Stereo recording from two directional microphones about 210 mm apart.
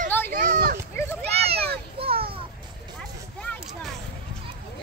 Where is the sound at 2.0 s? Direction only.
25° right (ahead or behind).